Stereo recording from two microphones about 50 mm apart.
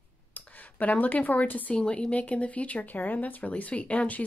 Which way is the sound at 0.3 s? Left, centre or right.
Left.